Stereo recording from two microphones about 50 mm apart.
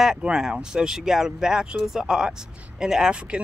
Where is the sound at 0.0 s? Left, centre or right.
Centre.